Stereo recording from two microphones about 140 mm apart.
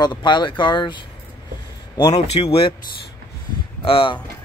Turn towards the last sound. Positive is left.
turn(degrees=40)  # may be behind; listen again after turning